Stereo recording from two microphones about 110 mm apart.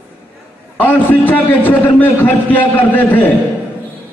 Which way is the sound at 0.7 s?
15° left (ahead or behind).